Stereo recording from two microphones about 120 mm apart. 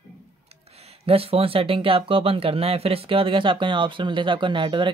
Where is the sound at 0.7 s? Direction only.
55° right (ahead or behind).